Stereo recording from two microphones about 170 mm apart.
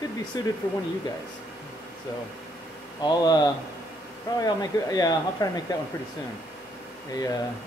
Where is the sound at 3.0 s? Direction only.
25° left (ahead or behind).